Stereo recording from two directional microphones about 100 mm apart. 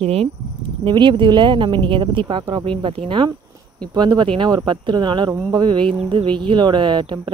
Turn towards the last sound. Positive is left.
turn(degrees=-55)  # may be behind; listen again after turning